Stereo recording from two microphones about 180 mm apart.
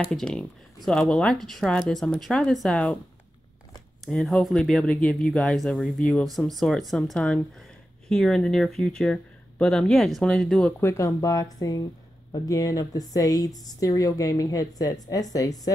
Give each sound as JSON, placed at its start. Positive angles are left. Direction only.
{"t": 0.1, "sound": "speech", "side_deg": 5}
{"t": 4.0, "sound": "a woman's voice", "side_deg": 0}